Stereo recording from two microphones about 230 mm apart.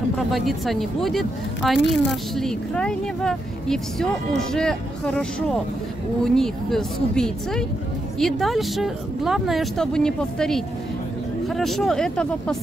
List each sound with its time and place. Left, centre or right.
0.3 s speech: centre